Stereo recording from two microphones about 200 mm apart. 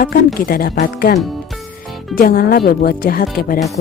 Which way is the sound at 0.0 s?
50° left (ahead or behind).